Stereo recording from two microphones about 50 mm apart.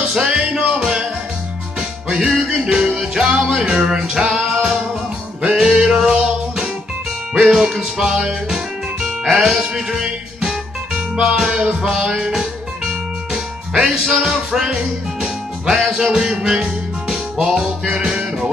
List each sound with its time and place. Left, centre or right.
0.1 s music: centre
4.5 s music: centre
5.4 s music: centre